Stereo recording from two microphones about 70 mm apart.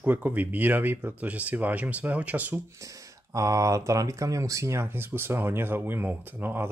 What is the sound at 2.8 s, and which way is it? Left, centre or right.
Speech, right.